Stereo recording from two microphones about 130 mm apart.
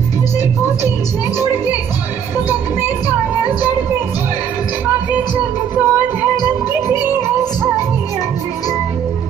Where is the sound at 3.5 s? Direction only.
15° right (ahead or behind).